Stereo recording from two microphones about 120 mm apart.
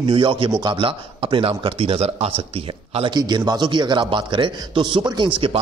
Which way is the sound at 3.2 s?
35° right (ahead or behind).